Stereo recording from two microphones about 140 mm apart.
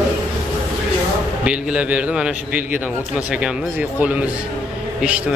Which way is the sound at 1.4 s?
10° right (ahead or behind).